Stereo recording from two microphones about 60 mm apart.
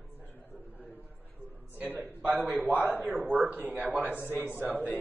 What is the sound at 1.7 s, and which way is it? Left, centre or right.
A man's voice, right.